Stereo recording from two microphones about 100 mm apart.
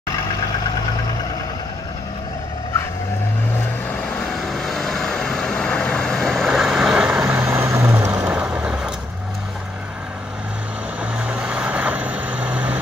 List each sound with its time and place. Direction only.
4.4 s vehicle: centre (ahead or behind)
7.3 s vehicle: 25° right (ahead or behind)
8.3 s vehicle: 10° right (ahead or behind)
11.1 s vehicle: 10° right (ahead or behind)